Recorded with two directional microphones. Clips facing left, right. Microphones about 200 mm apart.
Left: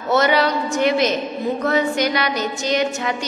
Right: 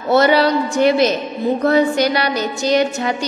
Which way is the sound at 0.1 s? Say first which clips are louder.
Right 4 dB; 35° right (ahead or behind).